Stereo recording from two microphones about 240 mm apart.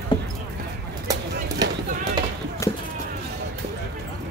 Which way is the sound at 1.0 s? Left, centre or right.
Centre.